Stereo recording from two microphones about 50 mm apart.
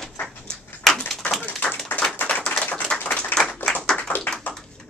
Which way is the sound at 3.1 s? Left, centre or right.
Centre.